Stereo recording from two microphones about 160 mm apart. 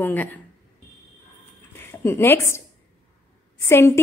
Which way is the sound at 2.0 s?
15° left (ahead or behind).